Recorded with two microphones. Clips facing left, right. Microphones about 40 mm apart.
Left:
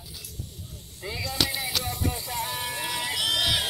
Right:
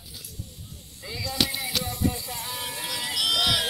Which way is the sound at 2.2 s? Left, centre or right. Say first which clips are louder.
Left 4 dB; left.